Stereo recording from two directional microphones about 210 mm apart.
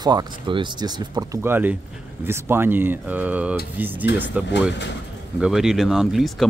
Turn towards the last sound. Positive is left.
turn(degrees=0)  # may be behind; listen again after turning